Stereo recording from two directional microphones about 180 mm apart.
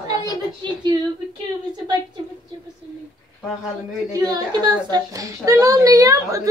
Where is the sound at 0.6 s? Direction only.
25° right (ahead or behind).